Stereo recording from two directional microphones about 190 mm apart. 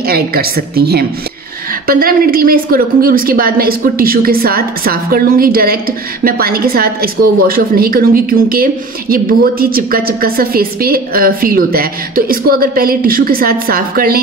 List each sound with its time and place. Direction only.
0.0 s a woman's voice: 50° right (ahead or behind)